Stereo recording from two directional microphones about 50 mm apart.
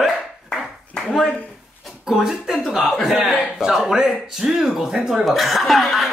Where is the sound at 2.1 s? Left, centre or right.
Centre.